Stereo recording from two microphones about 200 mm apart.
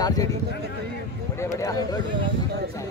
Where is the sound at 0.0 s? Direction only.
20° left (ahead or behind).